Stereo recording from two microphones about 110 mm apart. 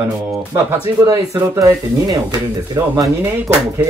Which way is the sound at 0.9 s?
30° right (ahead or behind).